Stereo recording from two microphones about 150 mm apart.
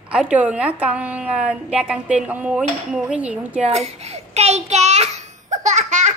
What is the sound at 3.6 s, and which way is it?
Child singing, 45° right (ahead or behind).